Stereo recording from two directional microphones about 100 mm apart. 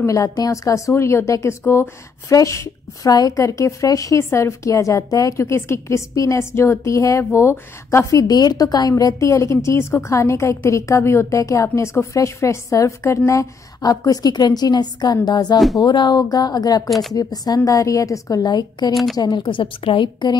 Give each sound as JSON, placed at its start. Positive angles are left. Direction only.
{"t": 0.0, "sound": "a woman's voice", "side_deg": 35}
{"t": 19.4, "sound": "a woman's voice", "side_deg": 60}